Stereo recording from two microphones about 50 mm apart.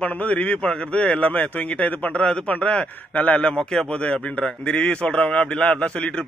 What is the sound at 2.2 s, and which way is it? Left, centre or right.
A man's voice, centre.